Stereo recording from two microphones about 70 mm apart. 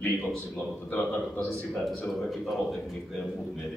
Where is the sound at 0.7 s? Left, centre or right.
Left.